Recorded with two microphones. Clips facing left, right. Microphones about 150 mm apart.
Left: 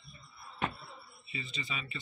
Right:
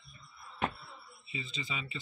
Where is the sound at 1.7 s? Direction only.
20° right (ahead or behind).